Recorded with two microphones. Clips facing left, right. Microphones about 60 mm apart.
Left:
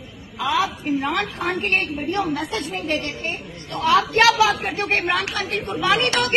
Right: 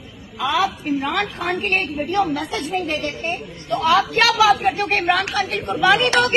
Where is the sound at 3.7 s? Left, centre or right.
Right.